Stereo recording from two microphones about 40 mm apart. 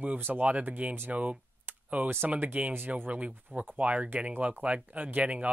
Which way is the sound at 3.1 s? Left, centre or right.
Right.